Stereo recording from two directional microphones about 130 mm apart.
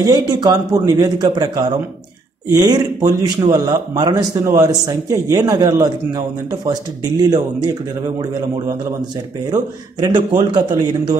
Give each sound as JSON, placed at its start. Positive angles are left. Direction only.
{"t": 0.0, "sound": "a man's voice", "side_deg": -30}